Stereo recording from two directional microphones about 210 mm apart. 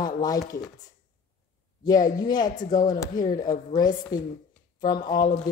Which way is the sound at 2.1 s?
20° left (ahead or behind).